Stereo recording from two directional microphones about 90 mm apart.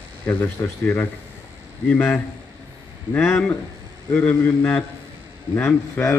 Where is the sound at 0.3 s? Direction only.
20° left (ahead or behind).